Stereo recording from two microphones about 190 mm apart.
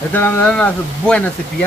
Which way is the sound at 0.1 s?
10° left (ahead or behind).